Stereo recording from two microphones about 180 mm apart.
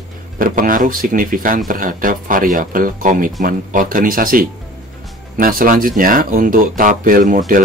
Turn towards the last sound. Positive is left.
turn(degrees=-45)  # may be behind; listen again after turning